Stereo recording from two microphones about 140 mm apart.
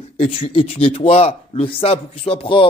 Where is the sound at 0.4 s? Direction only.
40° left (ahead or behind).